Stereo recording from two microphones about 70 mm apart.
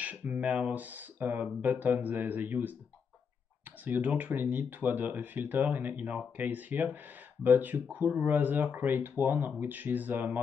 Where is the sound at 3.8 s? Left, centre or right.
Right.